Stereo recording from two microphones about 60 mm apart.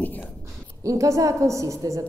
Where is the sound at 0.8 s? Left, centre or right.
Right.